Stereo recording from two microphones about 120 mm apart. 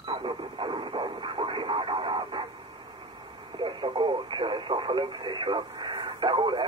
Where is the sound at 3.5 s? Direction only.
45° right (ahead or behind).